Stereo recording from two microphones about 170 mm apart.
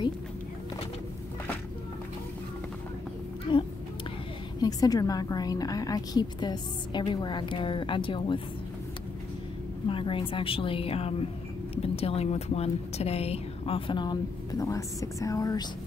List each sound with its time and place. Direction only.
4.6 s a woman's voice: 20° left (ahead or behind)
9.8 s speech: 30° left (ahead or behind)